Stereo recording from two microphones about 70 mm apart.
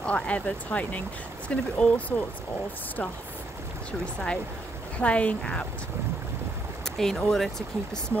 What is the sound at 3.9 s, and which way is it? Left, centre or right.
Speech, centre.